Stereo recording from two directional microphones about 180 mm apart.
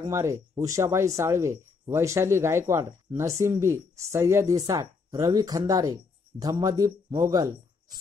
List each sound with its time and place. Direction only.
0.0 s a man's voice: 15° right (ahead or behind)